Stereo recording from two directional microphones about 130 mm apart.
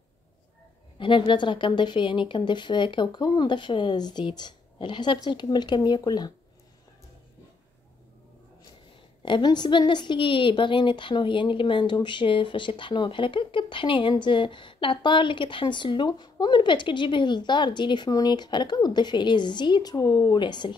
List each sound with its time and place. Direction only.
0.9 s a woman's voice: 40° left (ahead or behind)
9.2 s a woman's voice: 35° left (ahead or behind)